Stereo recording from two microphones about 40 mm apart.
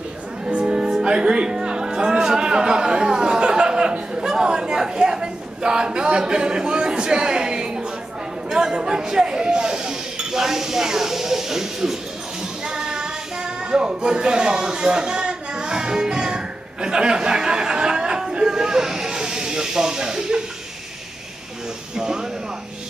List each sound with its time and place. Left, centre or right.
0.5 s music: right
0.7 s music: centre
4.1 s speech: centre
12.6 s child singing: centre
21.9 s speech: centre